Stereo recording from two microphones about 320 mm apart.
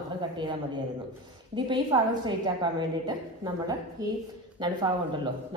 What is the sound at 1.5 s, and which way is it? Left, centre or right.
A woman's voice, centre.